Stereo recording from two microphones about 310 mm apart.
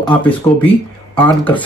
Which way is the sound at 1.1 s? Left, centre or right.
Centre.